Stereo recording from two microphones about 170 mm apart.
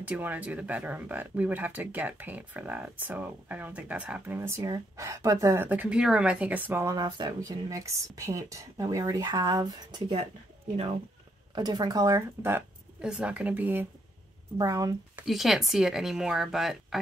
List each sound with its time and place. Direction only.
0.0 s speech: 10° right (ahead or behind)
11.5 s speech: 25° right (ahead or behind)
14.6 s speech: 20° right (ahead or behind)
15.1 s speech: centre (ahead or behind)